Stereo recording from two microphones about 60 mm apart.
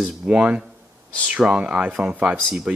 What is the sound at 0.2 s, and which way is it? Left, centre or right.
Speech, centre.